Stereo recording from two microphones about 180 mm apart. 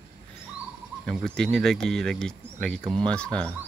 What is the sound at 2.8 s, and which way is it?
Speech, 30° right (ahead or behind).